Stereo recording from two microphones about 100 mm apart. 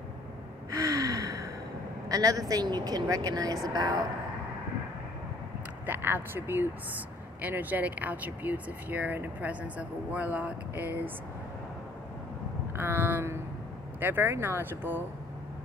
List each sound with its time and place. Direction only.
0.7 s gasp: 35° right (ahead or behind)
2.0 s speech: 40° right (ahead or behind)
5.9 s speech: 20° right (ahead or behind)
12.7 s speech: 20° right (ahead or behind)